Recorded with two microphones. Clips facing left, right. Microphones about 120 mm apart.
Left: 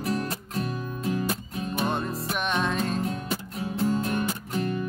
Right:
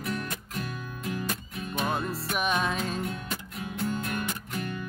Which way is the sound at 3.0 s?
30° left (ahead or behind).